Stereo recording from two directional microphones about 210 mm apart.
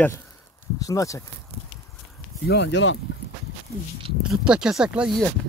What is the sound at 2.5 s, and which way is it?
Speech, 55° left (ahead or behind).